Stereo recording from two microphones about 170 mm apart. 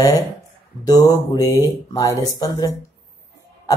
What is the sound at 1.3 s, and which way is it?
Speech, 25° left (ahead or behind).